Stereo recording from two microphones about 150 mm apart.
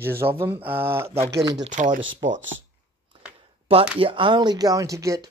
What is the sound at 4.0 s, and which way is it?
Speech, 35° right (ahead or behind).